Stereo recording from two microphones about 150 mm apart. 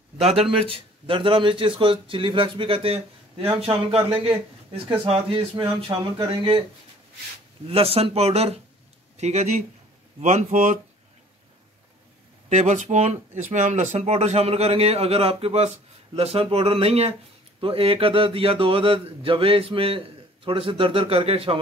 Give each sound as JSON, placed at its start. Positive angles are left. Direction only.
{"t": 0.4, "sound": "a man's voice", "side_deg": -40}
{"t": 7.6, "sound": "a man's voice", "side_deg": -40}
{"t": 12.4, "sound": "a man's voice", "side_deg": -55}